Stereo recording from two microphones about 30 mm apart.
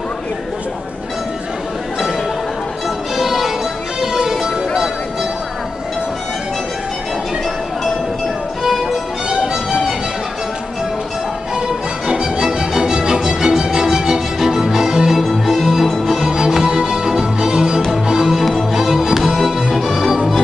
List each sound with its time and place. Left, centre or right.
3.2 s music: centre
8.6 s music: centre
12.1 s music: right
15.1 s music: centre; by 17.8 s right
18.2 s music: centre